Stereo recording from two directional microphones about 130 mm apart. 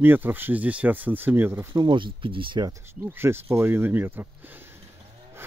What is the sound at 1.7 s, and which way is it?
Speech, 40° right (ahead or behind).